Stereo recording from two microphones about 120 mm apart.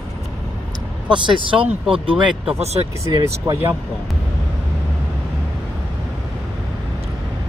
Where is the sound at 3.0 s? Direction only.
30° right (ahead or behind).